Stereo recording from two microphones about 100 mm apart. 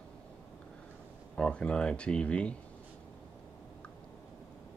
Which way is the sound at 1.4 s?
10° left (ahead or behind).